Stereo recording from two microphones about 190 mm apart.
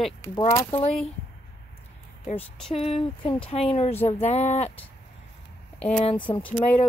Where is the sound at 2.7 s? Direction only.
30° left (ahead or behind).